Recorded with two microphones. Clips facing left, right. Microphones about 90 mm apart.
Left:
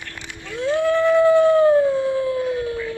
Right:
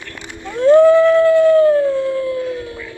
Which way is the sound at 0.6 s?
45° right (ahead or behind).